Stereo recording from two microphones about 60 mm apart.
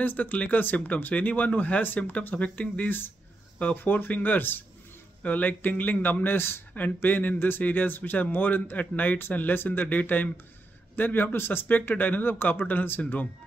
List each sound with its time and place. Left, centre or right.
0.0 s speech: left